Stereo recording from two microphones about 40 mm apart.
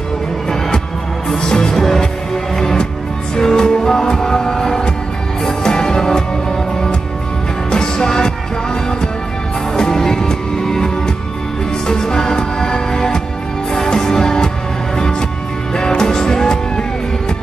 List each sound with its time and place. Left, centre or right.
1.3 s music: centre
9.8 s music: centre
11.9 s music: centre